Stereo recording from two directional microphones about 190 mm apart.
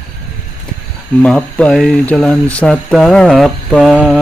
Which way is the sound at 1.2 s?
5° left (ahead or behind).